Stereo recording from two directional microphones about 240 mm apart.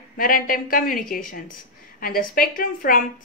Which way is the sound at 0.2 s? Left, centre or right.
Left.